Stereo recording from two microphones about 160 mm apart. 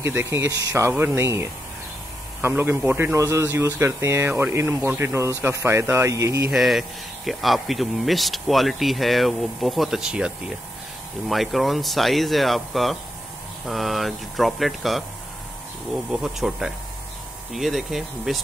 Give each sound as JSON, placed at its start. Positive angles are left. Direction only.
{"t": 0.0, "sound": "speech", "side_deg": -15}
{"t": 6.5, "sound": "speech", "side_deg": 0}
{"t": 16.1, "sound": "speech", "side_deg": -5}